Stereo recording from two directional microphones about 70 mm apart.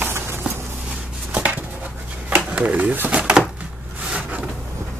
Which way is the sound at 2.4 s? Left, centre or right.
Centre.